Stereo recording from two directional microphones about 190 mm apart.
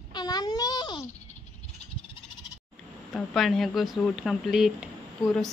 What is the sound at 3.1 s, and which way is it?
Speech, centre (ahead or behind).